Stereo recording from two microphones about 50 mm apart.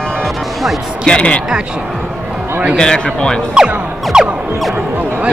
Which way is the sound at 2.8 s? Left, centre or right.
Centre.